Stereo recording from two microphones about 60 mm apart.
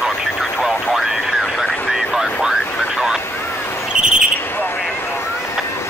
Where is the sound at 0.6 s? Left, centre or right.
Centre.